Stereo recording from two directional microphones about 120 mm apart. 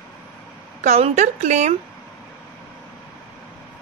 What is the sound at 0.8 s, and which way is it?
Speech, 65° right (ahead or behind).